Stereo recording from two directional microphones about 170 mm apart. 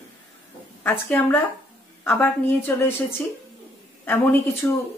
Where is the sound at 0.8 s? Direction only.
10° left (ahead or behind).